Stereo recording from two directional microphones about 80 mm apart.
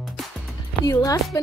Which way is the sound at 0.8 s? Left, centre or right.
Left.